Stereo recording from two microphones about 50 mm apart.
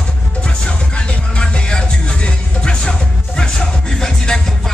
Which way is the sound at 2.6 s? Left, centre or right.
Centre.